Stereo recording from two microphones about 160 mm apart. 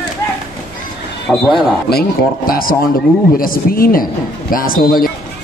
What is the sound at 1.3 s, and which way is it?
Speech, centre (ahead or behind).